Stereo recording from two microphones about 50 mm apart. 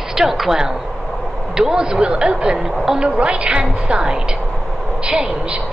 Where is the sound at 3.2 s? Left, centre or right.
Right.